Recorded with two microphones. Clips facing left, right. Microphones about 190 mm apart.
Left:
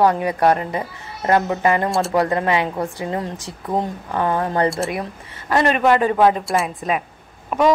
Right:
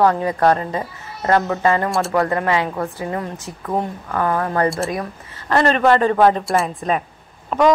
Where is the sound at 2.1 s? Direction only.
20° left (ahead or behind).